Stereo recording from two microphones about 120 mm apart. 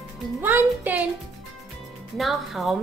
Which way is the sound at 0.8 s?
15° right (ahead or behind).